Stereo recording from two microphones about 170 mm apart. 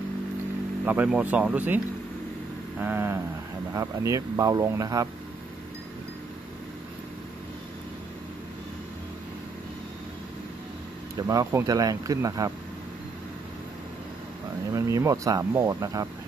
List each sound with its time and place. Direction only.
0.8 s speech: 10° right (ahead or behind)
2.8 s speech: 10° right (ahead or behind)
11.1 s speech: 20° right (ahead or behind)
14.7 s speech: 20° right (ahead or behind)